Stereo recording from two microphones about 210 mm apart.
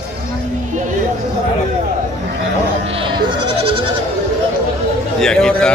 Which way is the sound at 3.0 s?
25° right (ahead or behind).